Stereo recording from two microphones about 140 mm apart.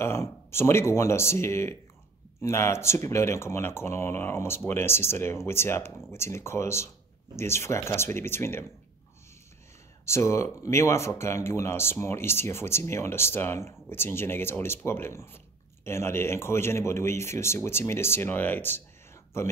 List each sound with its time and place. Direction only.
0.0 s speech: 20° left (ahead or behind)
10.0 s speech: 20° left (ahead or behind)